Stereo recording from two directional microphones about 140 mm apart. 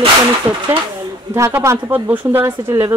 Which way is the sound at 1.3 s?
20° right (ahead or behind).